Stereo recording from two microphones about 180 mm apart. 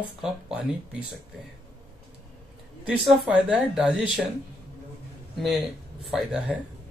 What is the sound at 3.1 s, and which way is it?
Speech, 5° right (ahead or behind).